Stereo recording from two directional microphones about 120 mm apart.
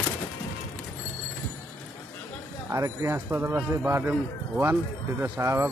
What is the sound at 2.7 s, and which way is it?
Speech, 25° right (ahead or behind).